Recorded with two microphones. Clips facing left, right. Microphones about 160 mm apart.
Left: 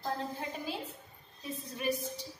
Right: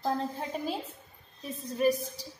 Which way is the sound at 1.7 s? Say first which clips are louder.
Right 8 dB; 40° right (ahead or behind).